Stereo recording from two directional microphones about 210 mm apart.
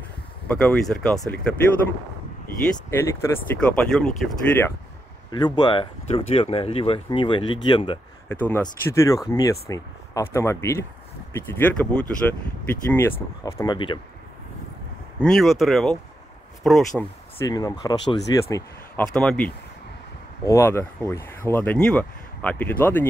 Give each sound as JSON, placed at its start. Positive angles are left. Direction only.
{"t": 0.5, "sound": "speech", "side_deg": 5}
{"t": 2.9, "sound": "speech", "side_deg": 10}
{"t": 5.3, "sound": "speech", "side_deg": 20}
{"t": 8.3, "sound": "speech", "side_deg": 10}
{"t": 15.1, "sound": "speech", "side_deg": 0}
{"t": 17.5, "sound": "speech", "side_deg": 15}